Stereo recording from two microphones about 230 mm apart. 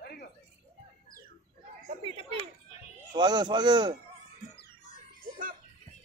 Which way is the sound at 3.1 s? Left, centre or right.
Centre.